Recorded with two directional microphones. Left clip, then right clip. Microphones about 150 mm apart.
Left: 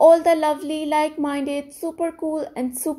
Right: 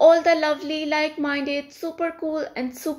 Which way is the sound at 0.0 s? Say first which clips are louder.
Left 2 dB; 35° left (ahead or behind).